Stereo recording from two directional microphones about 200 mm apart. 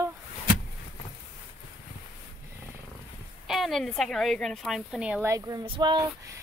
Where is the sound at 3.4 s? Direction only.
Centre (ahead or behind); by 6.0 s 20° right (ahead or behind).